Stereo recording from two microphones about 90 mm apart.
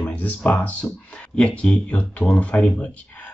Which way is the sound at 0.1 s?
15° left (ahead or behind).